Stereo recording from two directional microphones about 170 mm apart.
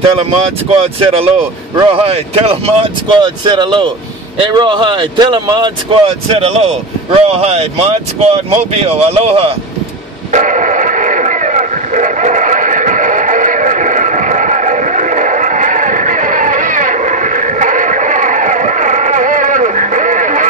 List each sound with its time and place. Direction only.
0.7 s speech: 35° right (ahead or behind)
10.3 s radio: 50° right (ahead or behind)